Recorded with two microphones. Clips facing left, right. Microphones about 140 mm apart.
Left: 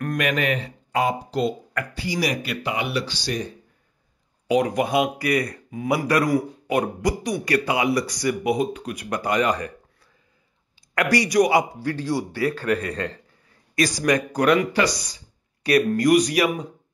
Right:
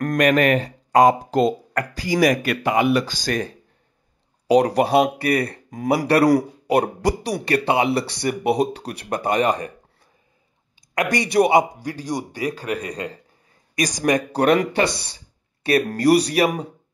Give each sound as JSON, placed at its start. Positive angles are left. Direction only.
{"t": 0.0, "sound": "speech", "side_deg": -40}
{"t": 4.5, "sound": "speech", "side_deg": -35}
{"t": 11.0, "sound": "a man's voice", "side_deg": -20}